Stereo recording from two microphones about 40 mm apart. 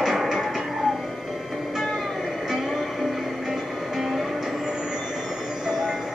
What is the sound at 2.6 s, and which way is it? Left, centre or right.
Music, centre.